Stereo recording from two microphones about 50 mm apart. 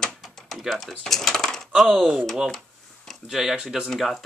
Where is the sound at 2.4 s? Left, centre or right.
Centre.